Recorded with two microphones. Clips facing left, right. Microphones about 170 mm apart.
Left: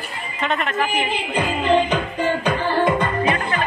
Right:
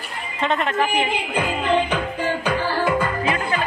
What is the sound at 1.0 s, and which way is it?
Music, 10° right (ahead or behind).